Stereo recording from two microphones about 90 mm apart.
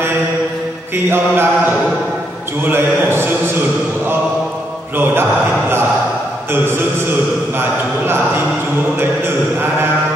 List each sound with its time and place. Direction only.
0.9 s a man's voice: 25° right (ahead or behind)
2.6 s a man's voice: 25° right (ahead or behind)
9.2 s mantra: 25° right (ahead or behind)